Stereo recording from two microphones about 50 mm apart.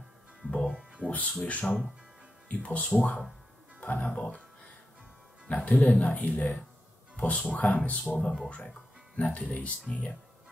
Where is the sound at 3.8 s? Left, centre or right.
Left.